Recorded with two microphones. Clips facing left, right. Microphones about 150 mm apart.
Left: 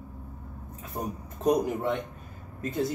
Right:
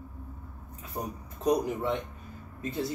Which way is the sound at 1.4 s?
50° left (ahead or behind).